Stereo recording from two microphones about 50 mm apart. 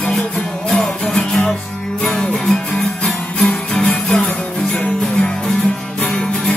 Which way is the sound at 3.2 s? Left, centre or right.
Left.